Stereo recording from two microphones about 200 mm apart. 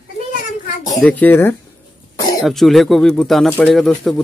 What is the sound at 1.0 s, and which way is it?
Speech, 10° left (ahead or behind).